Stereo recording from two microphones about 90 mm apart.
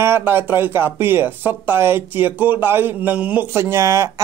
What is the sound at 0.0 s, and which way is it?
Speech, 25° right (ahead or behind).